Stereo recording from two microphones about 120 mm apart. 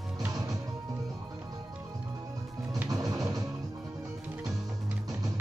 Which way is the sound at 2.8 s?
30° right (ahead or behind).